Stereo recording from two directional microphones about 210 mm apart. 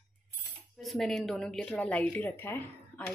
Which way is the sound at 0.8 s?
Centre (ahead or behind).